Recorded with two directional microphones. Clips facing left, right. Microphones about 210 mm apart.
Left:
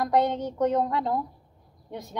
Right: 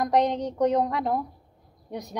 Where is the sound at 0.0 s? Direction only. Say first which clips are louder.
Right 1 dB; 20° right (ahead or behind).